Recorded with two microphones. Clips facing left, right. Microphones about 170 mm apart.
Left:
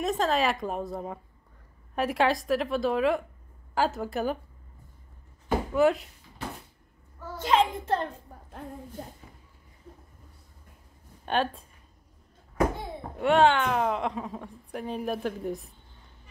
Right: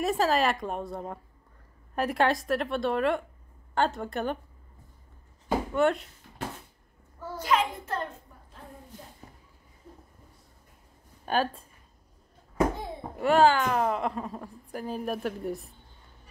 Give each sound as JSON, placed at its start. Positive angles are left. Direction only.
{"t": 0.0, "sound": "speech", "side_deg": -5}
{"t": 5.7, "sound": "speech", "side_deg": 0}
{"t": 7.3, "sound": "a sound", "side_deg": 25}
{"t": 11.2, "sound": "speech", "side_deg": 0}
{"t": 13.2, "sound": "speech", "side_deg": 0}